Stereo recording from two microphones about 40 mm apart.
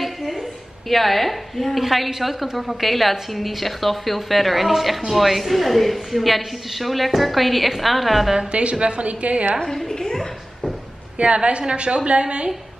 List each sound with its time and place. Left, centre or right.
0.0 s a sound: centre
1.8 s a woman's voice: centre
8.4 s a woman's voice: right
9.8 s a woman's voice: centre
11.1 s a woman's voice: right